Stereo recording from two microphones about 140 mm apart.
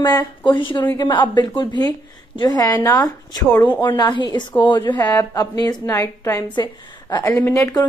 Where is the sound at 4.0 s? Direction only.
35° left (ahead or behind).